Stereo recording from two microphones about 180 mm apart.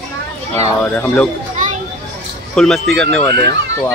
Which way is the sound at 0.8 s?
5° left (ahead or behind).